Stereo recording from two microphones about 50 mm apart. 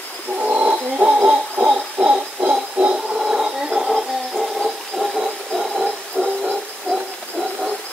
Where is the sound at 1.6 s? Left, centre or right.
Right.